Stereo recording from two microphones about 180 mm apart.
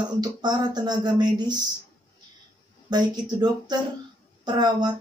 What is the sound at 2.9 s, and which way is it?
Speech, 25° right (ahead or behind).